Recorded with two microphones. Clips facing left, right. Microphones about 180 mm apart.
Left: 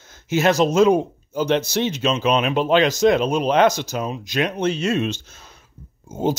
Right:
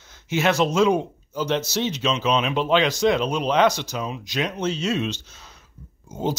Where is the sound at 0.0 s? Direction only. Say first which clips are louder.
Left 3 dB; 45° left (ahead or behind).